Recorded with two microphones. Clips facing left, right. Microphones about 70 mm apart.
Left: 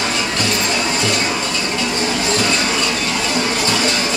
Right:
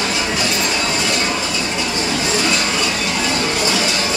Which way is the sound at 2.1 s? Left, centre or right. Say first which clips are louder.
Right 1 dB; centre.